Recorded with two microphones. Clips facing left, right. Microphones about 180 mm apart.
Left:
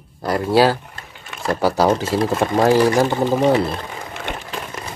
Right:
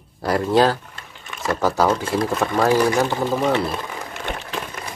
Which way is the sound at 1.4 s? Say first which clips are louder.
Left 2 dB; 35° left (ahead or behind).